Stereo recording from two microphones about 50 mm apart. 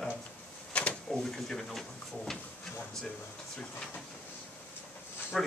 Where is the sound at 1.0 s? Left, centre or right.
Centre.